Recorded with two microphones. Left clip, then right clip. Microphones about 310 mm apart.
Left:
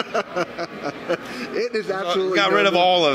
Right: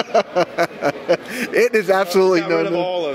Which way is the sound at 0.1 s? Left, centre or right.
Right.